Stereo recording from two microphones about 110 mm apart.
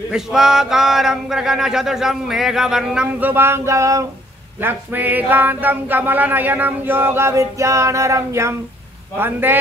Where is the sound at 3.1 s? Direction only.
20° right (ahead or behind).